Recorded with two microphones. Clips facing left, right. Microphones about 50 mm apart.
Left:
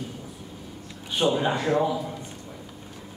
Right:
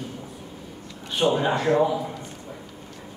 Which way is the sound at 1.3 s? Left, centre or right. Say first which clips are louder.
Right 2 dB; centre.